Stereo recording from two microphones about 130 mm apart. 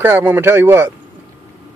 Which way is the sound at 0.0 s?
15° right (ahead or behind).